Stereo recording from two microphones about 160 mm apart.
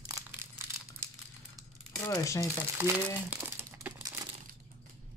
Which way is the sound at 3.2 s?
10° right (ahead or behind).